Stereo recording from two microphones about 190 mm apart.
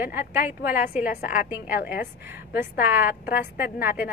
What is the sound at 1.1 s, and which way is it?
Speech, 45° left (ahead or behind).